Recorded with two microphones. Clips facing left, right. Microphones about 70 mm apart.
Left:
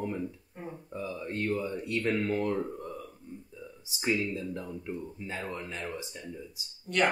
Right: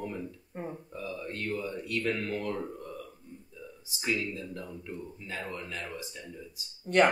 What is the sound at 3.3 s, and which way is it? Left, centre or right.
A man's voice, left.